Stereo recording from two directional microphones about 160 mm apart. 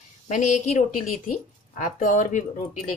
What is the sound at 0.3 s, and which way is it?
A woman's voice, 50° left (ahead or behind).